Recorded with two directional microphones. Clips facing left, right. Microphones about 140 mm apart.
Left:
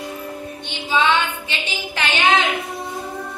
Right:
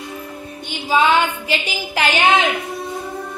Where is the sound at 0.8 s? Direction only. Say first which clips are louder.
Right 3 dB; 40° right (ahead or behind).